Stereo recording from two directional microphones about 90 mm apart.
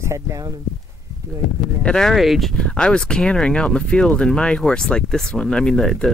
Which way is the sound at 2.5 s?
10° left (ahead or behind).